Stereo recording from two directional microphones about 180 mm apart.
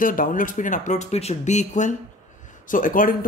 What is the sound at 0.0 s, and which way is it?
Speech, 50° left (ahead or behind).